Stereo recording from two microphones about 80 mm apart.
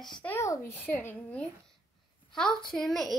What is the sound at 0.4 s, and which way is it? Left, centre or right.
Speech, left.